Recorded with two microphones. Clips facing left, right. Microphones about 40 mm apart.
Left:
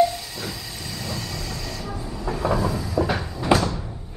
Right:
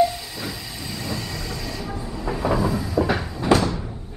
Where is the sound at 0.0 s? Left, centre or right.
Centre.